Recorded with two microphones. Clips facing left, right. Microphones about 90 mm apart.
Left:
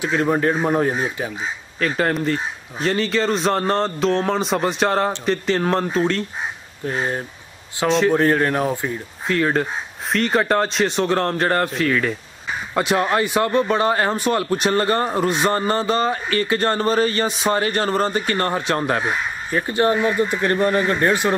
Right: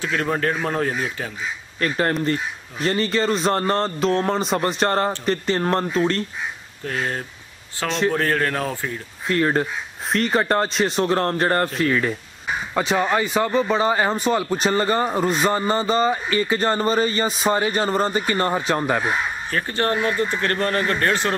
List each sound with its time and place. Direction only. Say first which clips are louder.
0.0 s speech: left 4 dB; 20° left (ahead or behind)
1.8 s speech: left 1 dB; centre (ahead or behind)
6.9 s speech: left 2 dB; 20° left (ahead or behind)
9.3 s speech: left 1 dB; centre (ahead or behind)
19.5 s speech: left 4 dB; 15° left (ahead or behind)